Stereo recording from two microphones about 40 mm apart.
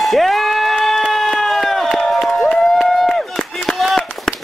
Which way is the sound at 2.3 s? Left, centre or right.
Left.